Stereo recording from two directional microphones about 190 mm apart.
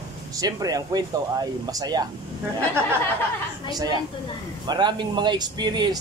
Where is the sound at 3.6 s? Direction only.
20° right (ahead or behind).